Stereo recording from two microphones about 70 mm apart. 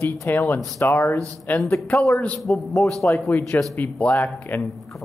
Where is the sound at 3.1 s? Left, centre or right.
Left.